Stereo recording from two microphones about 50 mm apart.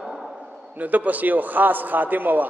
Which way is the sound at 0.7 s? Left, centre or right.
Right.